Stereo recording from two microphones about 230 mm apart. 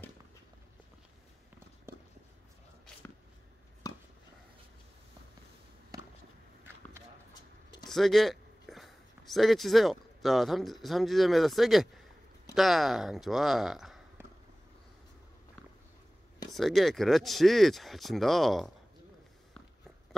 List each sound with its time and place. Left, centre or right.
2.9 s a sound: centre
3.8 s chopping: centre
7.9 s speech: centre
16.5 s speech: centre